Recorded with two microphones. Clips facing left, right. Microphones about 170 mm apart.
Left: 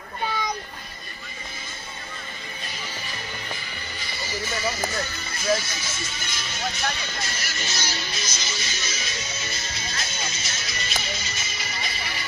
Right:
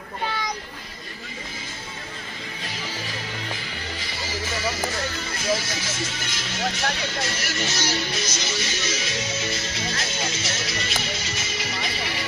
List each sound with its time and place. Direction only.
2.6 s music: 90° right
5.6 s speech: 90° right